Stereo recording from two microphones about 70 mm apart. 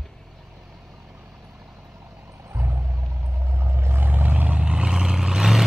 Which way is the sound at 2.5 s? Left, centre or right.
Right.